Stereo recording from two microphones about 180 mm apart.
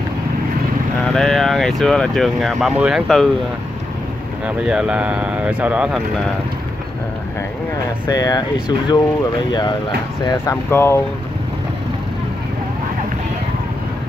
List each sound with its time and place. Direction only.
1.1 s speech: centre (ahead or behind)
4.5 s speech: 5° right (ahead or behind)
8.1 s speech: 20° left (ahead or behind)
9.5 s speech: 25° left (ahead or behind)
10.2 s speech: 15° left (ahead or behind)